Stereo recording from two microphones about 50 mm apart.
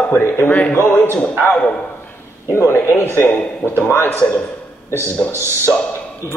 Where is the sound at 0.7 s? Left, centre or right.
Left.